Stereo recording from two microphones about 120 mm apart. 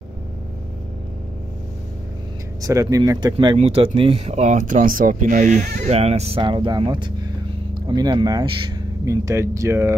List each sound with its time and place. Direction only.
2.6 s speech: 25° right (ahead or behind)
3.5 s speech: 55° right (ahead or behind)
6.4 s speech: 40° right (ahead or behind); by 9.9 s 25° right (ahead or behind)